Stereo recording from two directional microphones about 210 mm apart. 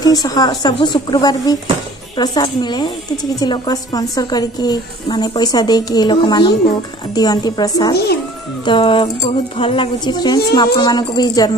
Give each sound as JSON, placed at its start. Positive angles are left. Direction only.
{"t": 0.0, "sound": "a woman's voice", "side_deg": 15}